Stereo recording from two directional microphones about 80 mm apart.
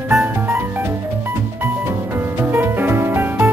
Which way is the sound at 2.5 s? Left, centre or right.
Right.